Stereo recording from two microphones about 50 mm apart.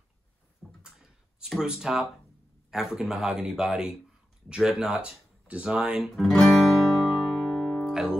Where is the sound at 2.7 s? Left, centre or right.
Centre; by 5.9 s right.